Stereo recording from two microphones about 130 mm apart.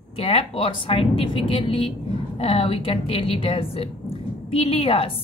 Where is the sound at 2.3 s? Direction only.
50° left (ahead or behind).